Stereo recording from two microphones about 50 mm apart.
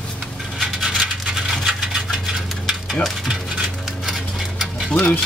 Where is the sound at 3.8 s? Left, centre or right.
Centre.